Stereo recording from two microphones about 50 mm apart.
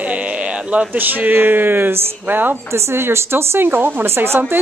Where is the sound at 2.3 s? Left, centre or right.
Right.